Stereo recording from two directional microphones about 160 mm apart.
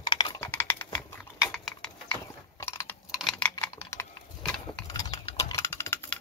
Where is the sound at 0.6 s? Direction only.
15° left (ahead or behind).